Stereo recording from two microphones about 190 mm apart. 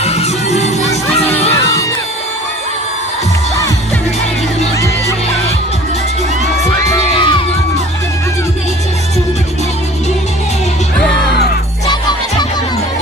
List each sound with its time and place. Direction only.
0.0 s music: 35° left (ahead or behind)
6.8 s music: 20° left (ahead or behind)
11.9 s music: 20° left (ahead or behind)